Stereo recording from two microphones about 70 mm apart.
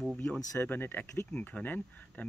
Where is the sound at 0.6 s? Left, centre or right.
Left.